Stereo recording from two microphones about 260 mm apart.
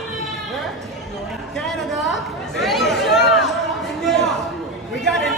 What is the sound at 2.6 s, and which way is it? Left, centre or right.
Chatter, centre.